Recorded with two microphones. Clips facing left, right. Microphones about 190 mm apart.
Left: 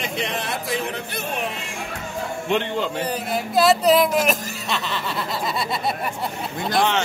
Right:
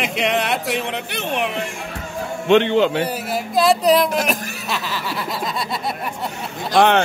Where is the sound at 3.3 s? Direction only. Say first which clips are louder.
Even; centre (ahead or behind).